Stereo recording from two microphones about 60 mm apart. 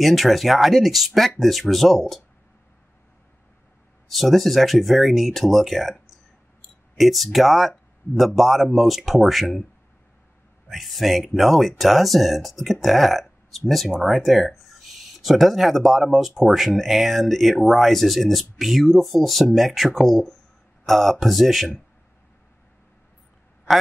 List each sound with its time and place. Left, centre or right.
0.0 s speech: centre
4.1 s speech: centre
7.0 s speech: centre
10.7 s speech: centre